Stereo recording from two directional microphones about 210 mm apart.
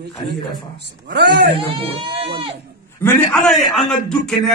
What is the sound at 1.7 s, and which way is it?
Speech, 25° right (ahead or behind).